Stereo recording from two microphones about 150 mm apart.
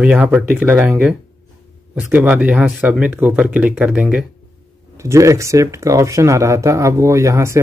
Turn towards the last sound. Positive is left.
turn(degrees=-20)  # may be behind; listen again after turning